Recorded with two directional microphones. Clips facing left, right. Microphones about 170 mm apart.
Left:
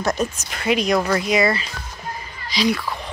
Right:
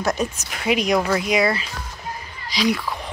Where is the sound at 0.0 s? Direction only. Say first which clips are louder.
Left 1 dB; 5° right (ahead or behind).